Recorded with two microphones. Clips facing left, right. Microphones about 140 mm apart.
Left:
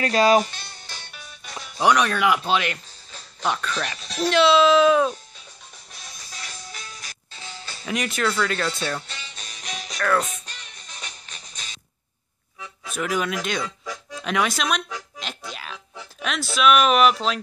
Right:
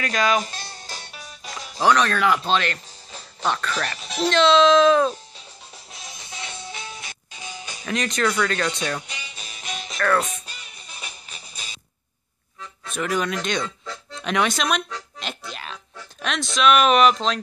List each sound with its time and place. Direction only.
0.0 s speech: 30° left (ahead or behind)
0.5 s music: 35° right (ahead or behind)
1.8 s speech: 10° left (ahead or behind)
6.1 s music: 20° right (ahead or behind)
7.8 s speech: 10° left (ahead or behind)
9.0 s music: 10° right (ahead or behind)
12.5 s accordion: 5° left (ahead or behind)